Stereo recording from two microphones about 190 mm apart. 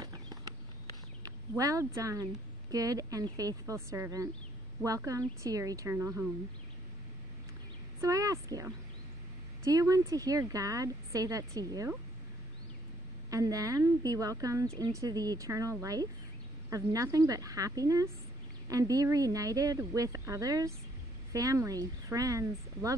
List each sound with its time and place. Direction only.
0.0 s a sound: 20° right (ahead or behind)
1.6 s speech: 15° right (ahead or behind)
8.0 s speech: 15° right (ahead or behind)
13.3 s speech: 20° right (ahead or behind)